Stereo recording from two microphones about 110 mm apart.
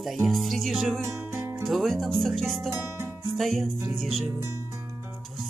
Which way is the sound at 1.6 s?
Centre (ahead or behind).